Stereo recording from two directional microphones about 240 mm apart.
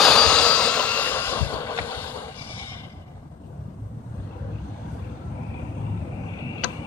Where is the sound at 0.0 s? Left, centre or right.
Centre.